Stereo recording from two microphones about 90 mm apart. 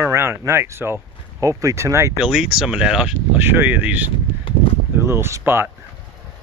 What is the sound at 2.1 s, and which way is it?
Speech, 5° right (ahead or behind).